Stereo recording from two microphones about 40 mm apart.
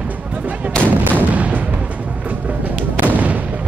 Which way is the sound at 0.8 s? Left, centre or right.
Right.